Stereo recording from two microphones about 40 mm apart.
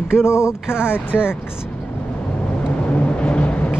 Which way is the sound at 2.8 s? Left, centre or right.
Left.